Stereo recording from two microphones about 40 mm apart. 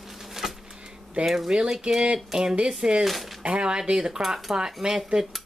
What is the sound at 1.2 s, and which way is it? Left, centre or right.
Speech, centre.